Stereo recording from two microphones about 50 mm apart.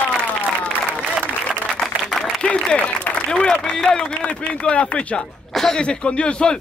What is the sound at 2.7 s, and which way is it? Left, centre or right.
Speech, left.